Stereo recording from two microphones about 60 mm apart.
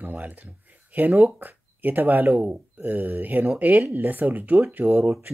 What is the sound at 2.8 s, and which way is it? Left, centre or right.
Speech, right.